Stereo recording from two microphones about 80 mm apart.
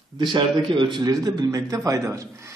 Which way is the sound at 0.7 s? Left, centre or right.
Right.